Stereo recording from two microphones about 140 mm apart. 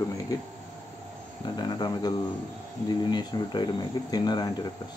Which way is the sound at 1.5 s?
30° left (ahead or behind).